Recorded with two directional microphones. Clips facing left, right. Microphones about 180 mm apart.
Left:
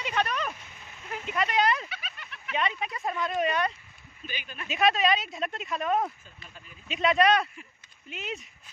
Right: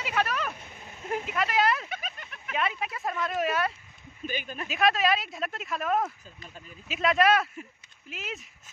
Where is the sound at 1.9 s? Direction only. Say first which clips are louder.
Right 5 dB; 45° right (ahead or behind).